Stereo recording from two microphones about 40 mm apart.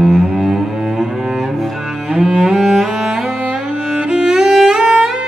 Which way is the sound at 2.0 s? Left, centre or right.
Centre.